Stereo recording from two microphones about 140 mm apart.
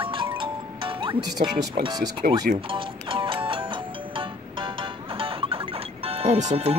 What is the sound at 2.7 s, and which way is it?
Music, 35° right (ahead or behind).